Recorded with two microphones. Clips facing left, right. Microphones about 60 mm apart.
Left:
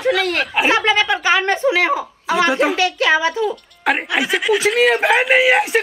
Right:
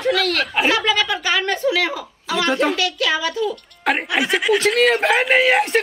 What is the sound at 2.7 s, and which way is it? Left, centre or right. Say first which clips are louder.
Speech: left 5 dB; left.